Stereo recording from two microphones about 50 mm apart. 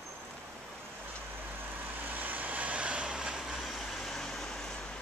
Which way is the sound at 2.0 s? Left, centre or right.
Right.